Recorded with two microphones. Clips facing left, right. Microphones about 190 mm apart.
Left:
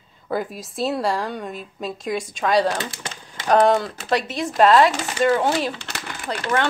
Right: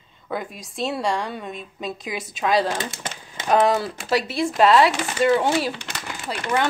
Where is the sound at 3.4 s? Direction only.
5° right (ahead or behind).